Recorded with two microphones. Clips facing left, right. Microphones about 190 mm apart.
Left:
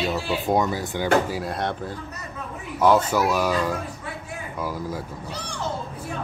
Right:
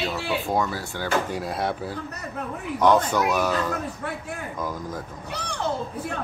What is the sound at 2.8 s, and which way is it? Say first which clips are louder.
A man's voice: left 1 dB; 5° left (ahead or behind).